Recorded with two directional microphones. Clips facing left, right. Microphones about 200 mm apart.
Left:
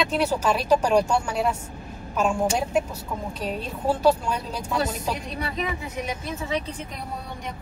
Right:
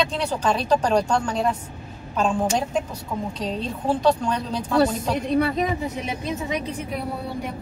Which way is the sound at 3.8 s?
5° left (ahead or behind).